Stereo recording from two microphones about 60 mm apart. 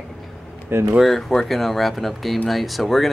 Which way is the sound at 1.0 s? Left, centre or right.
Centre.